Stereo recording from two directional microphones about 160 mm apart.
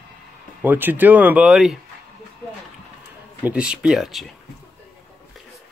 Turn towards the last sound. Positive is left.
turn(degrees=0)  # may be behind; listen again after turning